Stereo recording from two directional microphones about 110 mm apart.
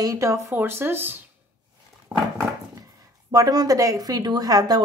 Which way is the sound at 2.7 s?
35° right (ahead or behind).